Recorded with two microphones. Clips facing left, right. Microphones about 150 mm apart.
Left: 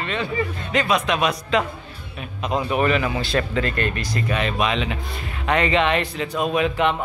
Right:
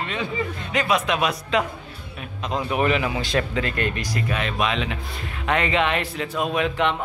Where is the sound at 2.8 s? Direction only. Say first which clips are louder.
Right 1 dB; 10° right (ahead or behind).